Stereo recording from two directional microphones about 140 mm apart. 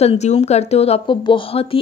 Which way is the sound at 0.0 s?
50° left (ahead or behind).